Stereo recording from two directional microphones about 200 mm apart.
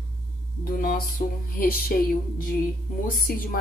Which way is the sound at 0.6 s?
45° left (ahead or behind).